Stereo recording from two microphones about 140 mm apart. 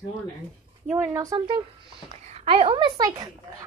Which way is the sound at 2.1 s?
55° right (ahead or behind).